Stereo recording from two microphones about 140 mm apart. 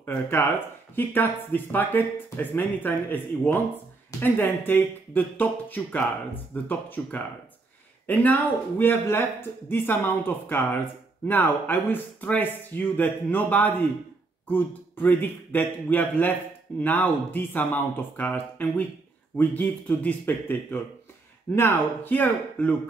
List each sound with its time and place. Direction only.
0.0 s speech: 15° left (ahead or behind)